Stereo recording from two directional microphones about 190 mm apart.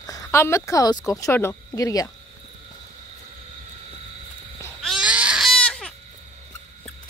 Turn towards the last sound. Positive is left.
turn(degrees=5)  # may be behind; listen again after turning